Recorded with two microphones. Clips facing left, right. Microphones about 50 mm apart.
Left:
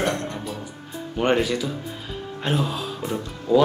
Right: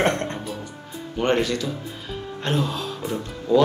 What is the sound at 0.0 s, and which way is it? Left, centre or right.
Music, right.